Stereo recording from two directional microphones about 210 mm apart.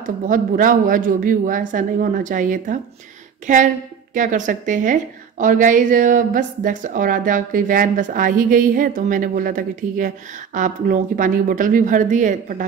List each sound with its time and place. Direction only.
0.0 s a woman's voice: 40° right (ahead or behind)